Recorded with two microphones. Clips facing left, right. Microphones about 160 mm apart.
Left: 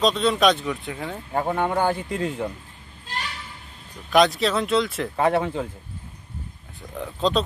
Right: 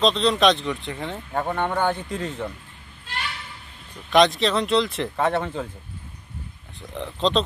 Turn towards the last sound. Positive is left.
turn(degrees=5)  # may be behind; listen again after turning